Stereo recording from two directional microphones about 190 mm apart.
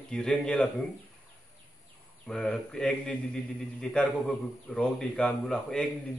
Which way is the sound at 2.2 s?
5° left (ahead or behind).